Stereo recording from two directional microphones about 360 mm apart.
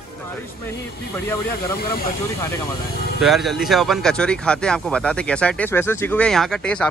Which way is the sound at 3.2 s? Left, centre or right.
Centre.